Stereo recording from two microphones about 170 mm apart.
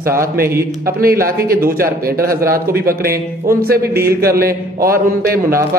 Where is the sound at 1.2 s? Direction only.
60° right (ahead or behind).